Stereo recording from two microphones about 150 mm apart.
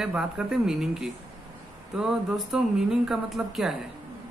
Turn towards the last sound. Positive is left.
turn(degrees=0)  # may be behind; listen again after turning